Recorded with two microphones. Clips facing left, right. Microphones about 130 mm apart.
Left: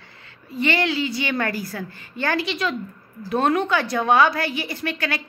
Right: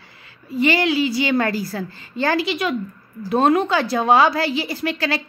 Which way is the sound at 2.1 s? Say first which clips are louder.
Right 4 dB; 20° right (ahead or behind).